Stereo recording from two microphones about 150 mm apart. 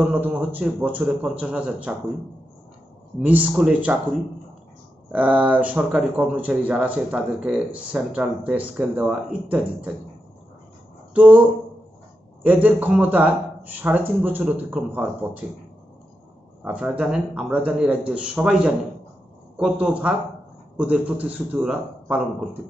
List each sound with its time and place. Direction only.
0.0 s speech: 10° right (ahead or behind)
3.2 s speech: 10° right (ahead or behind)
5.1 s speech: 10° right (ahead or behind)
11.1 s speech: 10° right (ahead or behind)
12.4 s speech: 10° right (ahead or behind)
16.6 s speech: 5° right (ahead or behind)